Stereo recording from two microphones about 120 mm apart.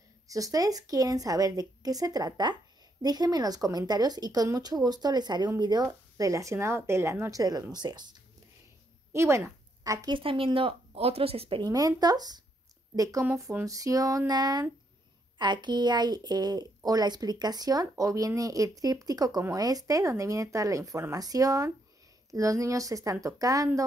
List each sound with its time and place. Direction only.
0.3 s a woman's voice: 30° right (ahead or behind)
9.1 s a sound: 25° right (ahead or behind)
10.0 s speech: 45° right (ahead or behind)
11.6 s a woman's voice: 30° right (ahead or behind)